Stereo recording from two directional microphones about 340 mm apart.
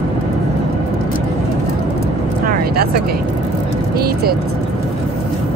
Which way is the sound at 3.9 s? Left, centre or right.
Right.